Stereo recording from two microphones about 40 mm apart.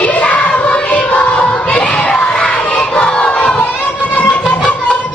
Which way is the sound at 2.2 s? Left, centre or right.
Left.